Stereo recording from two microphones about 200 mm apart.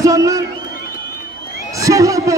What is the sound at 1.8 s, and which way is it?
Speech, 15° right (ahead or behind).